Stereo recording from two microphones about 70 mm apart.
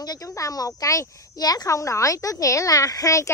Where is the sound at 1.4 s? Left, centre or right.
Left.